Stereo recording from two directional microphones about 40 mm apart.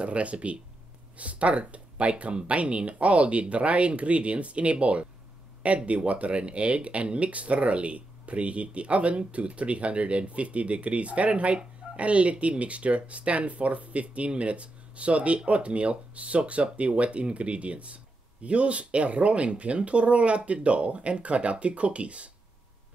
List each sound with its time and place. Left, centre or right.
0.0 s speech: right